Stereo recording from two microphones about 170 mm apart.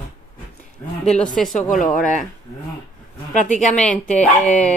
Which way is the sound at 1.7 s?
50° left (ahead or behind).